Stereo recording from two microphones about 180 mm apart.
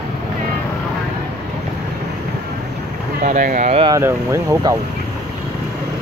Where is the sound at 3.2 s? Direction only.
45° right (ahead or behind).